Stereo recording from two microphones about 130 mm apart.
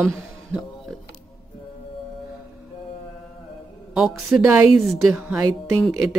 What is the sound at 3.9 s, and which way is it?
Speech, 5° right (ahead or behind).